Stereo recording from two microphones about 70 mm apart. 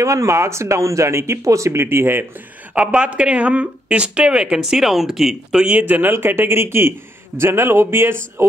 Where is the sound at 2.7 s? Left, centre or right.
Centre.